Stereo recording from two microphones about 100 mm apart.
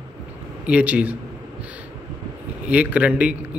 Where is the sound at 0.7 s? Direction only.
15° right (ahead or behind).